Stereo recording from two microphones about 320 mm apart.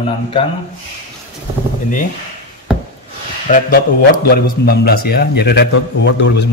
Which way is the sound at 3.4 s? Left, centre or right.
Left.